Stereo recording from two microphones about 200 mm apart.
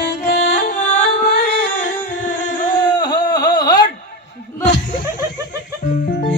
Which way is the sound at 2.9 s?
20° left (ahead or behind).